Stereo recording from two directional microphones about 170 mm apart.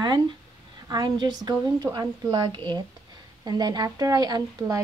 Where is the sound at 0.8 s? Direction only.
25° right (ahead or behind).